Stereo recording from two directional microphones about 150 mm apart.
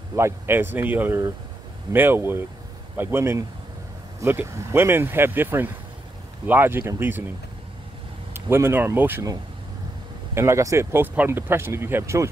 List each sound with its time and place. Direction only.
0.1 s speech: 15° right (ahead or behind)
8.3 s speech: 15° right (ahead or behind)